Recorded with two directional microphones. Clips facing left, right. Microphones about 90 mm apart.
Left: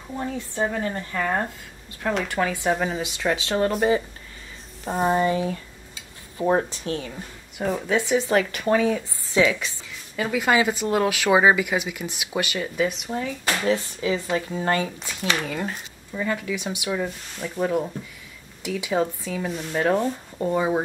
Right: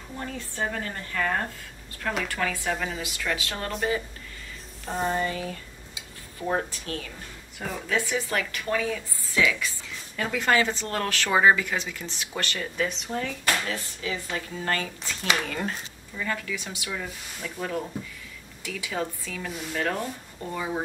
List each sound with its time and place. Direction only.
0.2 s a woman's voice: 20° left (ahead or behind); by 4.0 s 35° left (ahead or behind)
5.0 s a woman's voice: 20° left (ahead or behind)
9.8 s speech: 5° left (ahead or behind)
13.7 s a woman's voice: 25° left (ahead or behind)
15.4 s speech: 5° left (ahead or behind)
16.2 s a woman's voice: 20° left (ahead or behind)